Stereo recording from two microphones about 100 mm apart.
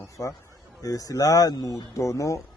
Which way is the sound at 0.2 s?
30° left (ahead or behind).